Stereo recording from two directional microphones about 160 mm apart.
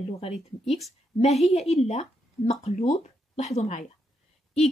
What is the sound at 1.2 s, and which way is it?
A woman's voice, 40° left (ahead or behind).